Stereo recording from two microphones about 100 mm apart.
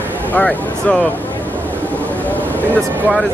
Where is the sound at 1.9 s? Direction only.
15° left (ahead or behind).